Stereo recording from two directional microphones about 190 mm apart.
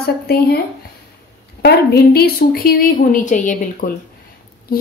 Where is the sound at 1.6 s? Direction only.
55° left (ahead or behind).